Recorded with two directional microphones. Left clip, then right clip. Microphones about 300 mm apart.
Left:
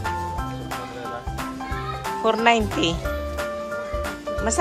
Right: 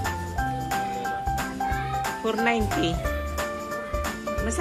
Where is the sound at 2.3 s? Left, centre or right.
Centre.